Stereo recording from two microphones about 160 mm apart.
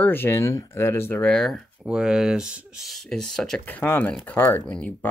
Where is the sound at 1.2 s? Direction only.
5° left (ahead or behind).